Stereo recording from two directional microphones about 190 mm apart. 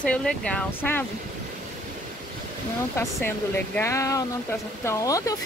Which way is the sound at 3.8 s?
15° left (ahead or behind).